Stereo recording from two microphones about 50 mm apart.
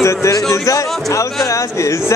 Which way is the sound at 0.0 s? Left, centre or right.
Left.